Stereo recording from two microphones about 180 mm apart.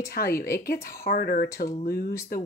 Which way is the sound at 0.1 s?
55° left (ahead or behind).